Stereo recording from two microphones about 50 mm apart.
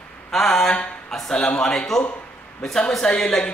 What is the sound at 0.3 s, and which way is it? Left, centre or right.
Speech, centre.